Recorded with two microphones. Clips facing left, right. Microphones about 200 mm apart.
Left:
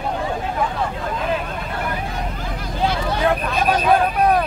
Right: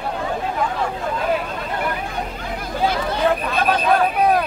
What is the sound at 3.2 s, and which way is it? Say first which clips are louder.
Speech: even; centre (ahead or behind).